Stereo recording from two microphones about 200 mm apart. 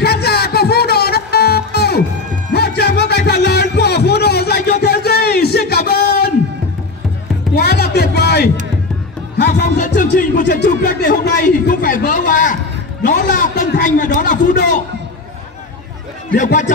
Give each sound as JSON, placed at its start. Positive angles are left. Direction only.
{"t": 0.0, "sound": "music", "side_deg": 55}
{"t": 4.8, "sound": "a sound", "side_deg": 55}
{"t": 7.5, "sound": "music", "side_deg": 55}
{"t": 9.5, "sound": "a man's voice", "side_deg": 40}
{"t": 16.3, "sound": "a man's voice", "side_deg": 40}